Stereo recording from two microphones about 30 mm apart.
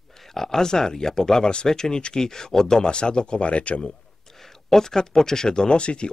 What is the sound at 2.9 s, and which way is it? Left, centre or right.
Speech, left.